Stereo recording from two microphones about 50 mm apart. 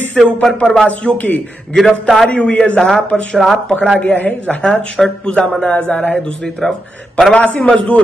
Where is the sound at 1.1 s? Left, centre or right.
Left.